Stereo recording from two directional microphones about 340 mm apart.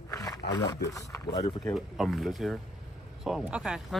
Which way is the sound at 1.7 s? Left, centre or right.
Centre.